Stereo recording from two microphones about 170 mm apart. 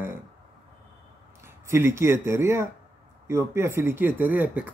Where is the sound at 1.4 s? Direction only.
15° right (ahead or behind).